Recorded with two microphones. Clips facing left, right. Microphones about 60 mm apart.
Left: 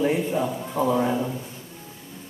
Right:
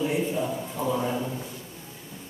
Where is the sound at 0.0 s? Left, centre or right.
Left.